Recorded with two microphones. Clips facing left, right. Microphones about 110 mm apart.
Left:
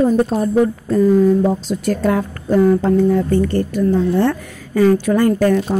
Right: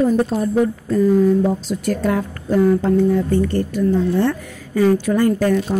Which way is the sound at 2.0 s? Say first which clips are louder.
Left 4 dB; 60° left (ahead or behind).